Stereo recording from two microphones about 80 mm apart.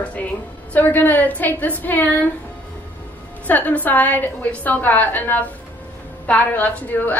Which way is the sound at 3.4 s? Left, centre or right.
Left.